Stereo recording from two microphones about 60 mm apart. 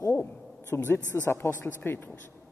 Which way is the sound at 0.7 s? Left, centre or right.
Left.